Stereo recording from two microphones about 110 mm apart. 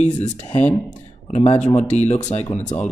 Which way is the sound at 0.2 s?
90° left.